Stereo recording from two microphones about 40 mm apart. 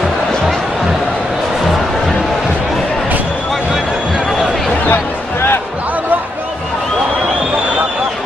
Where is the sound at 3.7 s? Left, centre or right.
Centre.